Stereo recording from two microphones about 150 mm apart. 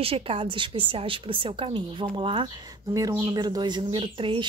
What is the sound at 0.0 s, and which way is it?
Speech, 40° right (ahead or behind).